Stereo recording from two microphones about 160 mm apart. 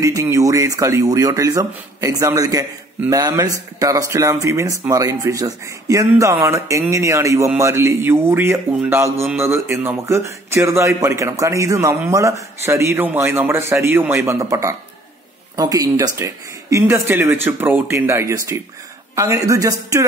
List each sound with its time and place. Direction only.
0.0 s speech: 20° right (ahead or behind)